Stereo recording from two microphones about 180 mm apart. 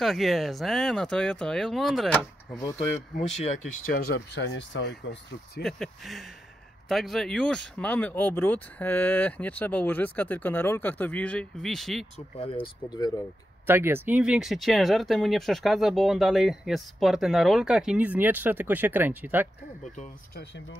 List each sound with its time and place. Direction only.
0.0 s speech: centre (ahead or behind)
3.3 s speech: 40° left (ahead or behind); by 5.6 s 70° left (ahead or behind)
5.6 s speech: centre (ahead or behind)
12.6 s speech: 25° left (ahead or behind)
13.7 s speech: 10° right (ahead or behind)